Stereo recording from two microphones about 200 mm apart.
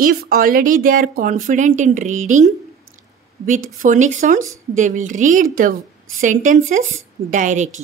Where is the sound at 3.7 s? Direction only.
40° right (ahead or behind).